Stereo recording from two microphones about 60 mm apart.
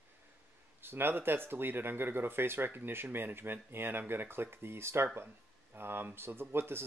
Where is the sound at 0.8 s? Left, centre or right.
Right.